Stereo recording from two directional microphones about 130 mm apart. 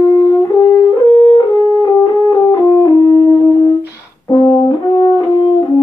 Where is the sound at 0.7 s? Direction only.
30° left (ahead or behind).